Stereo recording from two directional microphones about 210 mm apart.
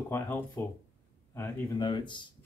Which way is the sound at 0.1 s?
10° left (ahead or behind).